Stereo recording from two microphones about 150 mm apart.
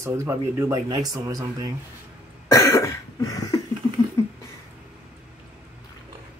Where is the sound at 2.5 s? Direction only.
20° left (ahead or behind).